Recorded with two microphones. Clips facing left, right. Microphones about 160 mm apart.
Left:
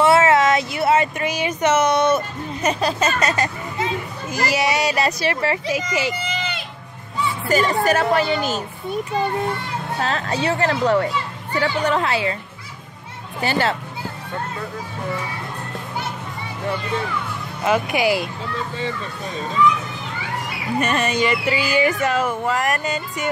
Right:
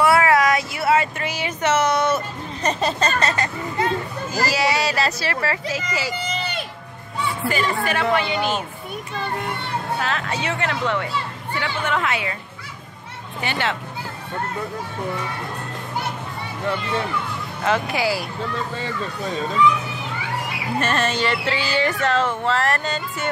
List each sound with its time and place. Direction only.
0.0 s a sound: 25° left (ahead or behind)
2.1 s hubbub: centre (ahead or behind)
4.3 s speech: 20° left (ahead or behind)
7.4 s a woman's voice: 40° left (ahead or behind)
9.9 s a woman's voice: 35° left (ahead or behind)
13.4 s a woman's voice: 40° left (ahead or behind)
17.6 s speech: 15° left (ahead or behind)
20.8 s speech: centre (ahead or behind)